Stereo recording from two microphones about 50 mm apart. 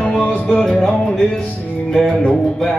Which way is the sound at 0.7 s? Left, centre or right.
Centre.